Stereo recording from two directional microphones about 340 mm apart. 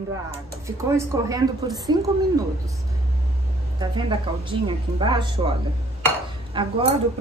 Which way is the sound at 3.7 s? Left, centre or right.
Centre.